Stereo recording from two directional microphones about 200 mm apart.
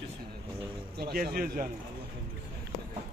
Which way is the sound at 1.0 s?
50° right (ahead or behind).